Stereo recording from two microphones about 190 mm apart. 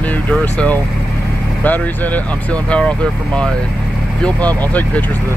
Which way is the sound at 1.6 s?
10° left (ahead or behind).